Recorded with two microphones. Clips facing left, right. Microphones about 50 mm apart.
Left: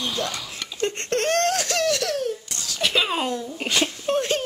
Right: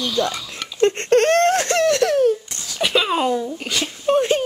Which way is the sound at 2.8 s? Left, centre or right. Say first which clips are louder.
Right 4 dB; centre.